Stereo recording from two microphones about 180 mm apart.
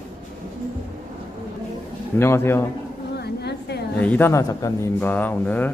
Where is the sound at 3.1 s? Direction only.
65° left (ahead or behind).